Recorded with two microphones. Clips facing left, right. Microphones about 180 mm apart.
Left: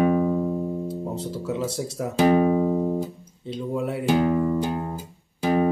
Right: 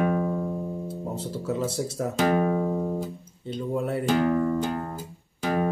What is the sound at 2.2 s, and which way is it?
Music, 15° left (ahead or behind).